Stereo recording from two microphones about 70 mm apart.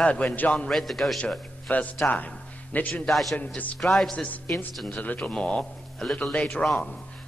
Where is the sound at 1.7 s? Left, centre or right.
Left.